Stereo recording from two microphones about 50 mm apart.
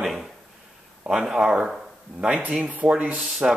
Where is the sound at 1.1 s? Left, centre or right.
Centre.